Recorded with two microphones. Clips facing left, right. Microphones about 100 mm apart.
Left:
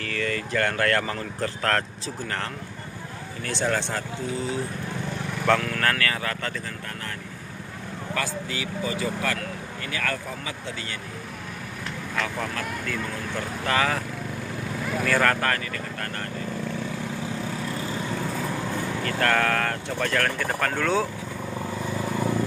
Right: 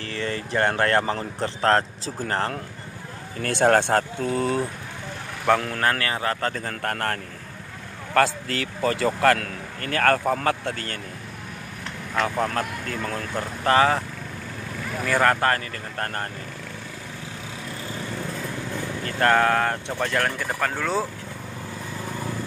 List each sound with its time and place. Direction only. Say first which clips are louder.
0.0 s speech: even; 25° right (ahead or behind)
3.4 s speech: right 8 dB; 55° right (ahead or behind)
5.6 s speech: right 1 dB; 30° right (ahead or behind)
6.8 s speech: right 9 dB; 60° right (ahead or behind)
12.2 s speech: right 6 dB; 40° right (ahead or behind)
15.0 s speech: right 2 dB; 15° right (ahead or behind)
15.4 s speech: right 3 dB; 35° right (ahead or behind)
19.0 s speech: right 4 dB; 25° right (ahead or behind)
20.7 s speech: left 1 dB; 5° right (ahead or behind)